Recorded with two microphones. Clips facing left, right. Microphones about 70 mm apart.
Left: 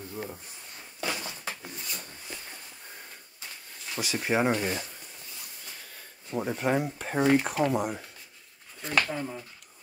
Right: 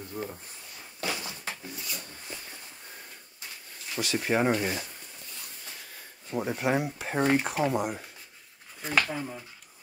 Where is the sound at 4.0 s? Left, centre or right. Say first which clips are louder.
Even; centre.